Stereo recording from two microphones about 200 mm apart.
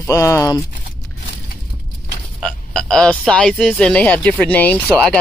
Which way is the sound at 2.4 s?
5° left (ahead or behind).